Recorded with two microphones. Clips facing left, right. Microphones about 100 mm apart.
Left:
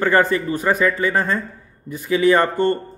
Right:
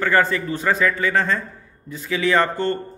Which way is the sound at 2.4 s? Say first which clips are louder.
Left 4 dB; 50° left (ahead or behind).